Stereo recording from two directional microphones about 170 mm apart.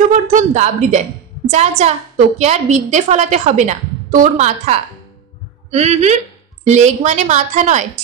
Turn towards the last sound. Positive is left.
turn(degrees=-45)  # may be behind; listen again after turning